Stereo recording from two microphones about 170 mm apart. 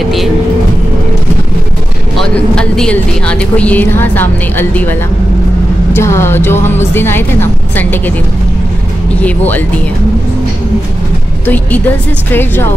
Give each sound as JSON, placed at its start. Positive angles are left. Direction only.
{"t": 2.1, "sound": "speech", "side_deg": 5}
{"t": 5.9, "sound": "speech", "side_deg": 15}
{"t": 9.2, "sound": "speech", "side_deg": 10}
{"t": 11.4, "sound": "speech", "side_deg": 10}